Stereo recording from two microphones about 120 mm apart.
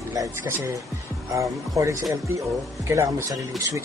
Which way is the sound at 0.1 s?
25° right (ahead or behind).